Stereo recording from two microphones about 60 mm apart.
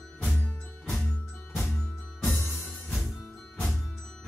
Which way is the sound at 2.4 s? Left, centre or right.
Left.